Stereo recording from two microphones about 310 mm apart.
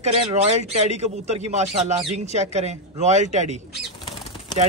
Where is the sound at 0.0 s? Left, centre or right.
Centre.